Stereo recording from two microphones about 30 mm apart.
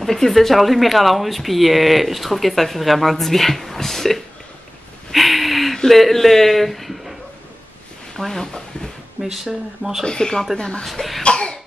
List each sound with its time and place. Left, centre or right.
0.0 s speech: centre
5.1 s a sound: centre
5.9 s speech: centre
8.2 s speech: centre
9.2 s speech: centre
10.0 s speech: left
10.9 s speech: centre
11.2 s cough: left